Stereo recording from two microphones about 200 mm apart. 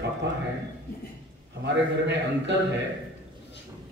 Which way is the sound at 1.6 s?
60° right (ahead or behind).